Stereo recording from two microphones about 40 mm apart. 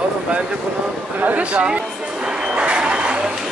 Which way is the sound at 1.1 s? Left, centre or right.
Right.